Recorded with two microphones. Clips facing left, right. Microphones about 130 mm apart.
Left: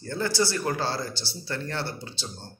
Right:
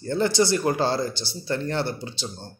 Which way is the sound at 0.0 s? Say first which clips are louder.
Right 5 dB; 20° right (ahead or behind).